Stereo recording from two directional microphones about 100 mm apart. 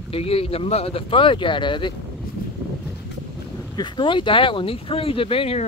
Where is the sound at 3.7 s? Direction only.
50° left (ahead or behind); by 5.6 s 70° left (ahead or behind).